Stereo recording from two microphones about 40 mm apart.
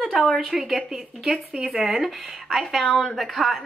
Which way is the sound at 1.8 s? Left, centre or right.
Centre.